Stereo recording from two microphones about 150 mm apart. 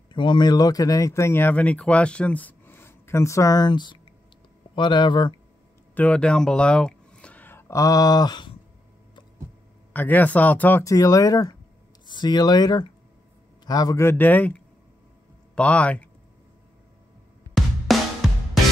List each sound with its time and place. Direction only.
0.1 s speech: 30° left (ahead or behind)
5.9 s speech: 10° left (ahead or behind); by 8.5 s 30° left (ahead or behind)
9.9 s speech: 10° left (ahead or behind)
17.6 s music: centre (ahead or behind)